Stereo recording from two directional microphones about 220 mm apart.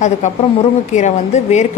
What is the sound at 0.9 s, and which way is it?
Speech, 30° left (ahead or behind).